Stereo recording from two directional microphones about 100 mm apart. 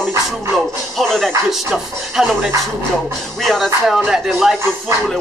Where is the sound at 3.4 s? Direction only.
Centre (ahead or behind).